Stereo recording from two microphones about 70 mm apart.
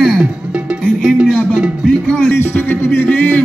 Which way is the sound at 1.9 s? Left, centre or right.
Centre.